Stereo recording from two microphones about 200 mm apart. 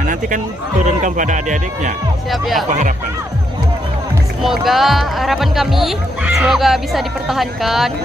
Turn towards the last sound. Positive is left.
turn(degrees=0)  # may be behind; listen again after turning